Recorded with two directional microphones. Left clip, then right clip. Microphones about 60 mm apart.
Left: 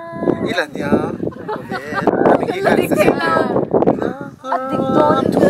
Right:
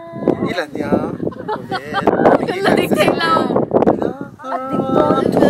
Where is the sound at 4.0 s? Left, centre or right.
Centre.